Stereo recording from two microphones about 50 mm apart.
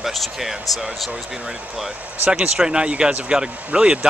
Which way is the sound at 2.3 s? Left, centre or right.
Centre.